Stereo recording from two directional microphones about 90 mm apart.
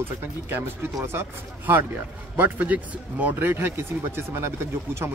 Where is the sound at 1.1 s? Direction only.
20° right (ahead or behind).